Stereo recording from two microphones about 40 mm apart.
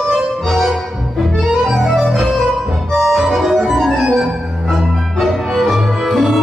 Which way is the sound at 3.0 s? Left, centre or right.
Centre.